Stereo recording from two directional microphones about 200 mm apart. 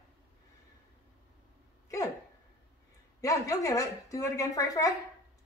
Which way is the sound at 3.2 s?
15° left (ahead or behind).